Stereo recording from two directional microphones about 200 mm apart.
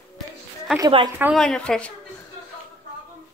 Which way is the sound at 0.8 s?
25° right (ahead or behind).